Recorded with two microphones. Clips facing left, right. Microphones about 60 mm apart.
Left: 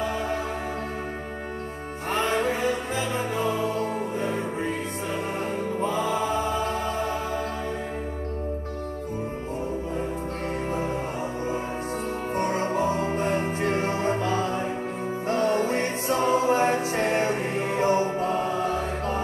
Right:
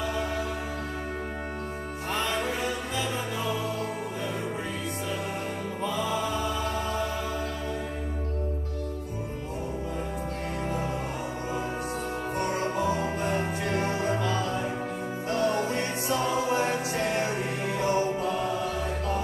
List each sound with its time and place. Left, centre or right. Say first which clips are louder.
2.1 s music: left 5 dB; left
5.8 s music: left 3 dB; left
12.4 s music: left 4 dB; left